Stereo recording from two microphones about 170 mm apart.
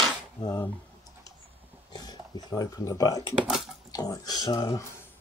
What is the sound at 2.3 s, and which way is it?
Speech, 20° left (ahead or behind).